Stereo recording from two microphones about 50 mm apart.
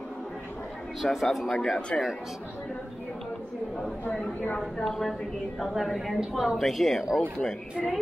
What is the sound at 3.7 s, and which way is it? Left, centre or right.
Chatter, centre.